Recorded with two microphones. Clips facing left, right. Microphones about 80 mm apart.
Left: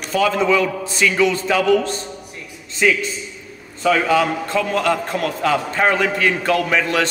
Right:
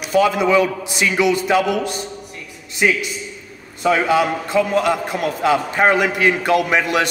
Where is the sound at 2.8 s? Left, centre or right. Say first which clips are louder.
Even; right.